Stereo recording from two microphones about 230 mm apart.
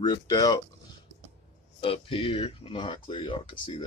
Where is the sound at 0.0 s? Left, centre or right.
Centre.